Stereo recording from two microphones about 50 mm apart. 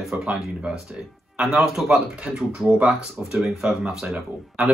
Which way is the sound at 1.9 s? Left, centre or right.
Right.